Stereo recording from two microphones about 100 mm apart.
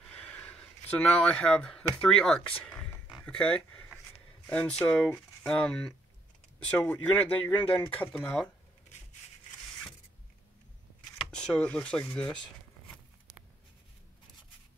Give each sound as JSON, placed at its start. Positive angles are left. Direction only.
{"t": 0.1, "sound": "a sound", "side_deg": 15}
{"t": 2.0, "sound": "speech", "side_deg": 5}
{"t": 3.1, "sound": "dog", "side_deg": 10}
{"t": 4.5, "sound": "speech", "side_deg": 10}
{"t": 11.1, "sound": "speech", "side_deg": 10}